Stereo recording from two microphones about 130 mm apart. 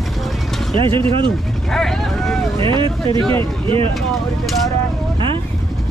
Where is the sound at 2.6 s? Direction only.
40° right (ahead or behind).